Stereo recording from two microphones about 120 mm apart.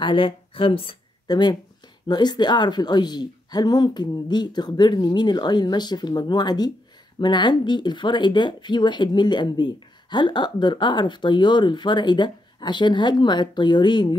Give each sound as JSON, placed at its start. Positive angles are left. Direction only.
{"t": 0.0, "sound": "speech", "side_deg": 45}
{"t": 1.2, "sound": "speech", "side_deg": 35}